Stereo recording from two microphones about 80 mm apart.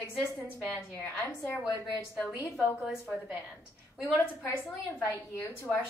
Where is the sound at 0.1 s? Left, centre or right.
Centre.